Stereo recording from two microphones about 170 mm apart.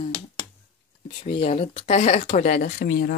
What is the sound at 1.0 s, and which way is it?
Speech, 35° left (ahead or behind).